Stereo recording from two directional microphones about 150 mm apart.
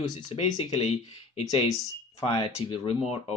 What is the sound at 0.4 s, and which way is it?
Speech, 45° left (ahead or behind).